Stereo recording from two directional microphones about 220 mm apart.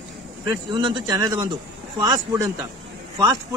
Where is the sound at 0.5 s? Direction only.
20° right (ahead or behind).